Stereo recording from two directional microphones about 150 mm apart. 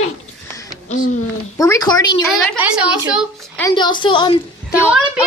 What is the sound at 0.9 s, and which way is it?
Speech, 55° left (ahead or behind).